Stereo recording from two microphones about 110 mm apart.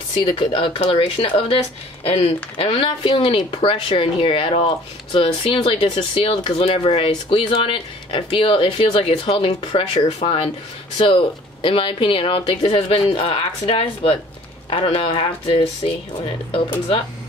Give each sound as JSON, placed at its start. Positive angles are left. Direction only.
{"t": 0.2, "sound": "speech", "side_deg": 50}